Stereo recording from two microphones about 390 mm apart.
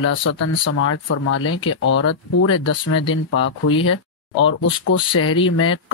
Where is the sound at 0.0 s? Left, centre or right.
Left.